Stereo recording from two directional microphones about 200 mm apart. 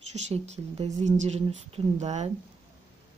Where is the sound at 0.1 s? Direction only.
30° right (ahead or behind).